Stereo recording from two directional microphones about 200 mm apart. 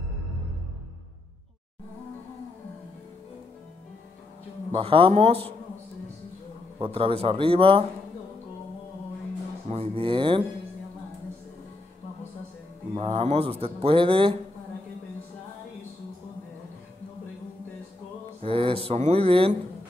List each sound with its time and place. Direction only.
4.7 s speech: 25° right (ahead or behind)
6.8 s speech: 25° right (ahead or behind)
9.7 s speech: 30° right (ahead or behind)
12.9 s speech: 30° right (ahead or behind)
18.4 s speech: 25° right (ahead or behind)